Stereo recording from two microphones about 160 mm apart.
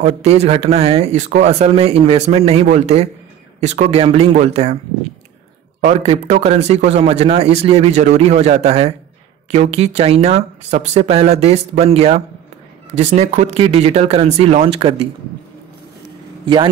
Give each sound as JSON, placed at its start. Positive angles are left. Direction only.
{"t": 0.0, "sound": "speech", "side_deg": -40}
{"t": 5.8, "sound": "speech", "side_deg": -45}